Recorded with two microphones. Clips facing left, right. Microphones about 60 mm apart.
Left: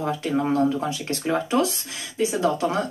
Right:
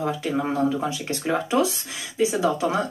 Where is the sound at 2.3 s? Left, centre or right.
Centre.